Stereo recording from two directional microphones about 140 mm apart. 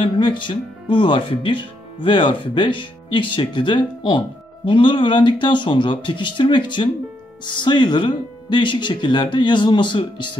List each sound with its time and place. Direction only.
0.0 s speech: 35° left (ahead or behind)